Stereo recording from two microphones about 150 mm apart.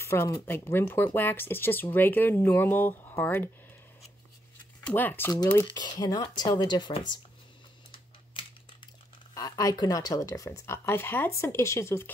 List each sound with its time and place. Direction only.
0.0 s speech: 15° left (ahead or behind)
4.8 s speech: 10° left (ahead or behind)
5.8 s speech: 25° left (ahead or behind)
8.3 s a sound: 35° left (ahead or behind)
9.3 s speech: 25° left (ahead or behind)